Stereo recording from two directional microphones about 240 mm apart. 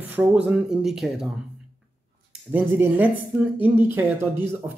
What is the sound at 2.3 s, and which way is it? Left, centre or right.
A woman's voice, centre.